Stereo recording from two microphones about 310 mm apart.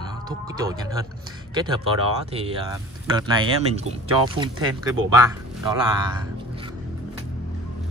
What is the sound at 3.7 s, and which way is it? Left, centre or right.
Speech, centre.